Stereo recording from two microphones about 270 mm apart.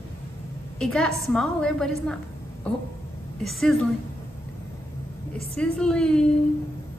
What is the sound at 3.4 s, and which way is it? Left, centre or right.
Speech, centre.